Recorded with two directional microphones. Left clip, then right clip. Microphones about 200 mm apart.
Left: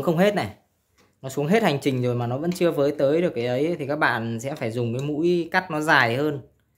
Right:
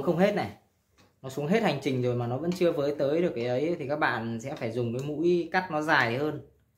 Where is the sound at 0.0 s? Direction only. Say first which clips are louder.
Left 5 dB; 60° left (ahead or behind).